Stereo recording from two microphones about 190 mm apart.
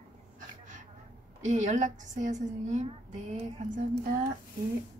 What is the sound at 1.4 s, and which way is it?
A woman's voice, 40° right (ahead or behind).